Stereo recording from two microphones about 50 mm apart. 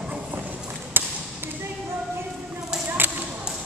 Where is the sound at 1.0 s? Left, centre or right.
Right.